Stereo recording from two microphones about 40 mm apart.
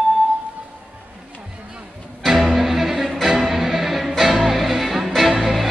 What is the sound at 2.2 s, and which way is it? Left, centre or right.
Music, centre.